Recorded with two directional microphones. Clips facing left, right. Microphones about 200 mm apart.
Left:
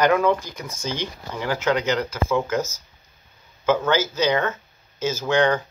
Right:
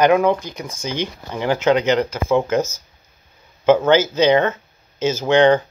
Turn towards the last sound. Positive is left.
turn(degrees=-25)  # may be behind; listen again after turning